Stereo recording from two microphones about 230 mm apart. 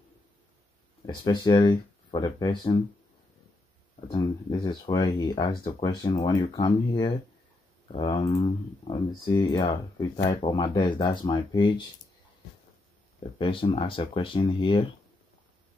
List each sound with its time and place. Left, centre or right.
1.0 s speech: centre
4.1 s speech: centre
9.3 s speech: centre
13.4 s speech: left